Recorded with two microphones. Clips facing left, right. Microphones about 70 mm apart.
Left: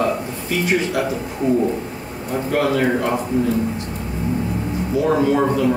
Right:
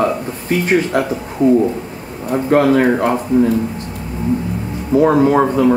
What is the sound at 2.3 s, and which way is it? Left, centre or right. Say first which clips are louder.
Speech: right 7 dB; right.